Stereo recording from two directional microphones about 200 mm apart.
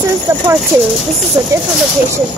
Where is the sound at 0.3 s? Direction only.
15° right (ahead or behind).